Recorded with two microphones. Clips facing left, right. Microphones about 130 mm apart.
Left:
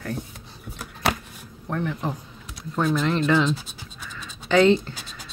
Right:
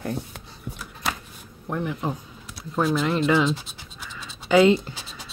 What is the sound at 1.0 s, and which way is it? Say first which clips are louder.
Shuffling cards: left 5 dB; 65° left (ahead or behind).